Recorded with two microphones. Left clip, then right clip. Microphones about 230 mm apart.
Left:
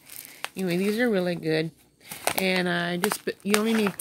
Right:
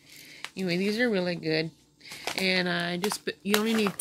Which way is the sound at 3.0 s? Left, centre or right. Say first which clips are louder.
Left 4 dB; left.